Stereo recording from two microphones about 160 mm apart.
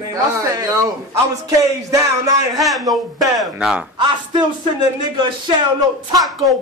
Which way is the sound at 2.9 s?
Centre (ahead or behind).